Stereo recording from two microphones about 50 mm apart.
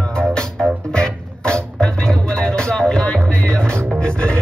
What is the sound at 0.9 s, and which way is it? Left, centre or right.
Music, centre.